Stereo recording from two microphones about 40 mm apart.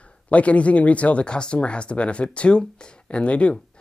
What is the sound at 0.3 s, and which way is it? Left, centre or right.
Speech, left.